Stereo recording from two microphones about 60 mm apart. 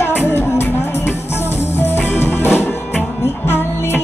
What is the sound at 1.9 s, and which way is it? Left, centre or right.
Music, left.